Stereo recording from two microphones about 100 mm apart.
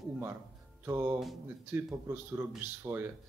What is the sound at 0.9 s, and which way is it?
Speech, 30° right (ahead or behind).